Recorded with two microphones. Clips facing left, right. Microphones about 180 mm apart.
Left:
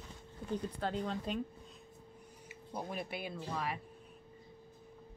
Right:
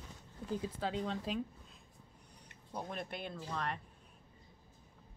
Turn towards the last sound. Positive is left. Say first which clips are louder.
# left 1 dB
turn(degrees=5)  # may be behind; listen again after turning